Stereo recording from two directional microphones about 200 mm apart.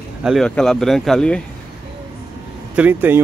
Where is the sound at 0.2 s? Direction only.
Centre (ahead or behind).